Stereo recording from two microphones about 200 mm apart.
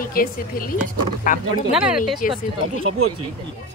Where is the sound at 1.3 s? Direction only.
45° left (ahead or behind).